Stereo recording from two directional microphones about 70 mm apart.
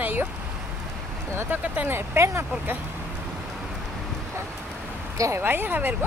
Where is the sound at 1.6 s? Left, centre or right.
Right.